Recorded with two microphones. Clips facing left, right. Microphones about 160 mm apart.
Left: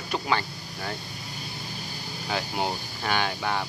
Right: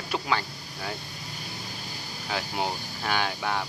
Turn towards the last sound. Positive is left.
turn(degrees=0)  # may be behind; listen again after turning